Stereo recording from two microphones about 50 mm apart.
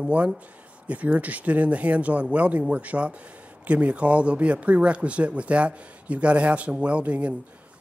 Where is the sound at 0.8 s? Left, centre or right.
Right.